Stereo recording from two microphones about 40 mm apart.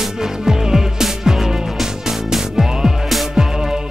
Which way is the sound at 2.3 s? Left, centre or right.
Centre.